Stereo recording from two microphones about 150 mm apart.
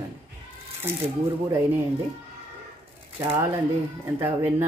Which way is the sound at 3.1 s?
15° right (ahead or behind).